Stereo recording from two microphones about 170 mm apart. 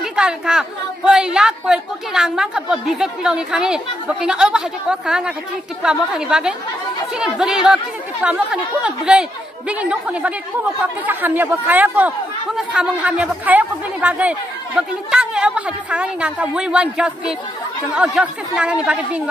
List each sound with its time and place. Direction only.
0.0 s a woman's voice: 5° right (ahead or behind)